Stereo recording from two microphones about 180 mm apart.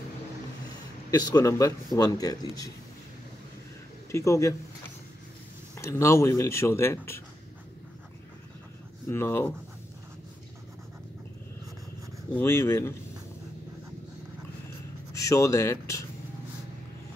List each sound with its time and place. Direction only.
1.1 s speech: 20° left (ahead or behind)
4.1 s speech: 15° left (ahead or behind)
5.8 s speech: 15° left (ahead or behind)
9.1 s speech: 15° left (ahead or behind)
12.4 s speech: 15° left (ahead or behind)
15.1 s speech: 15° left (ahead or behind)